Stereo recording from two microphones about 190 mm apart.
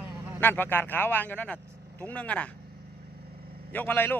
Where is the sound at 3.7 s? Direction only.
10° left (ahead or behind).